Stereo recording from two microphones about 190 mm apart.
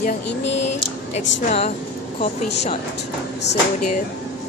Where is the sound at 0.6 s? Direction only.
35° left (ahead or behind).